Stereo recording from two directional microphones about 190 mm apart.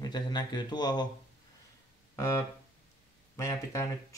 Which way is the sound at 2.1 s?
15° left (ahead or behind).